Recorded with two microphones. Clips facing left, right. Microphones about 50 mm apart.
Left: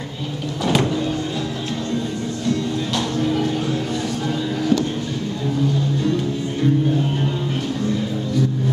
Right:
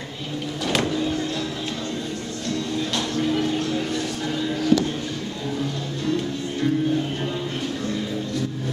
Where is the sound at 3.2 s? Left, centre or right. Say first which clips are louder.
Left 1 dB; centre.